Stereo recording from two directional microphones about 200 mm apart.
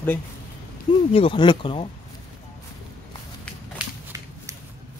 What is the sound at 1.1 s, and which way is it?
Speech, 25° left (ahead or behind).